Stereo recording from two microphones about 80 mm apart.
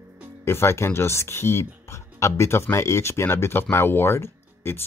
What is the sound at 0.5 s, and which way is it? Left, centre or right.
Speech, left.